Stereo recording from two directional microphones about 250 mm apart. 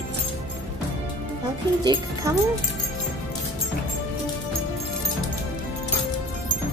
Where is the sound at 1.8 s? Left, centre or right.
Centre.